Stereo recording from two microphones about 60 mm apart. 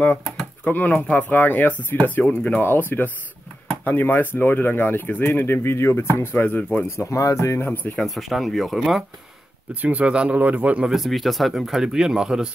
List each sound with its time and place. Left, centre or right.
0.0 s a sound: centre
0.7 s speech: left
7.0 s speech: left
7.6 s speech: left
8.0 s speech: centre
9.8 s speech: right
11.0 s speech: centre